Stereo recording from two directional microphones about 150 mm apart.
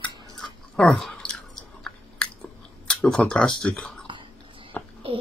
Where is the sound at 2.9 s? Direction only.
5° left (ahead or behind).